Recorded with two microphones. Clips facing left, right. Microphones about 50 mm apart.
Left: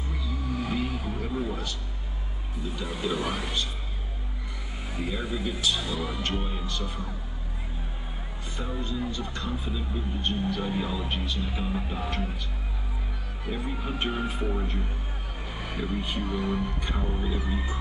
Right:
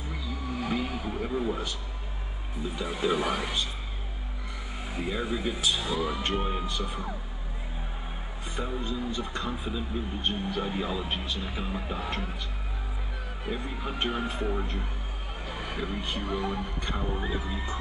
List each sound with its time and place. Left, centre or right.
0.6 s vehicle: centre
3.0 s speech: centre
3.3 s speech: centre
5.0 s speech: centre
8.5 s speech: centre
13.5 s speech: centre
15.5 s speech: centre
17.2 s speech: right